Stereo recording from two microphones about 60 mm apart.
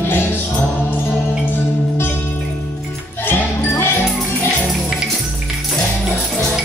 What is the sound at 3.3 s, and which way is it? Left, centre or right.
Music, left.